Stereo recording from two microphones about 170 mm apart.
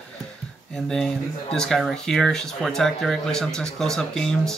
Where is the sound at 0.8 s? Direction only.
5° left (ahead or behind).